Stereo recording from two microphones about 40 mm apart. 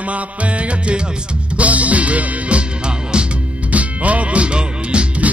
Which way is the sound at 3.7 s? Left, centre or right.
Right.